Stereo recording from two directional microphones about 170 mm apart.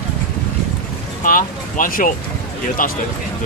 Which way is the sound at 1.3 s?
55° left (ahead or behind).